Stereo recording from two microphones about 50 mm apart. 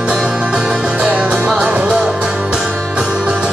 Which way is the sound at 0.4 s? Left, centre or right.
Centre.